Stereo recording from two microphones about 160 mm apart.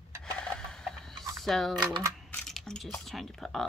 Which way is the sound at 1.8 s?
25° right (ahead or behind).